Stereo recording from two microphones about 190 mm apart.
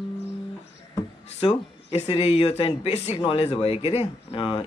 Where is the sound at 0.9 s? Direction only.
25° left (ahead or behind).